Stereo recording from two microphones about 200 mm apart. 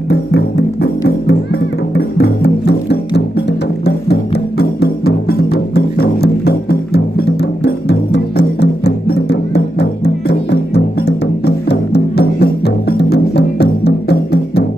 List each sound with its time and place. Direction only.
0.1 s music: 55° left (ahead or behind)